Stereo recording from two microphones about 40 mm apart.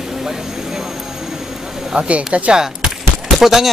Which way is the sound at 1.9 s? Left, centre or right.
Right.